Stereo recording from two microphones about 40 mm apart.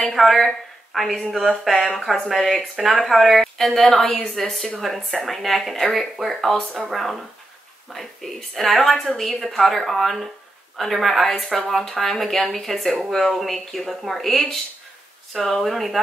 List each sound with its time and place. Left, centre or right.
0.0 s a woman's voice: centre
1.3 s a sound: centre
1.6 s speech: centre